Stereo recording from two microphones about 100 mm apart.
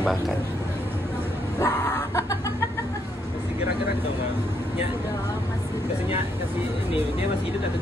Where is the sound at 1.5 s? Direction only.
35° left (ahead or behind).